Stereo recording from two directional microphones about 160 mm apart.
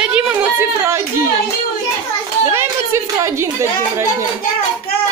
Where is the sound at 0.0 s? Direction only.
10° right (ahead or behind).